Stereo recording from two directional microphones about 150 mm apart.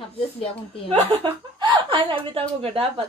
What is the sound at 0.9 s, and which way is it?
Speech, 35° right (ahead or behind).